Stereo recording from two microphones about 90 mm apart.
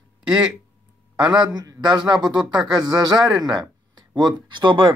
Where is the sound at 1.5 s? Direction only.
50° right (ahead or behind).